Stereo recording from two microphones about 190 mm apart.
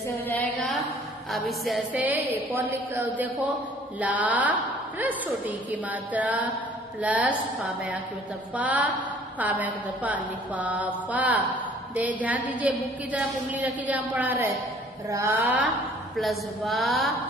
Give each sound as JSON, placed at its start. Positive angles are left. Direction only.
{"t": 0.3, "sound": "a woman's voice", "side_deg": 5}
{"t": 16.2, "sound": "a woman's voice", "side_deg": 0}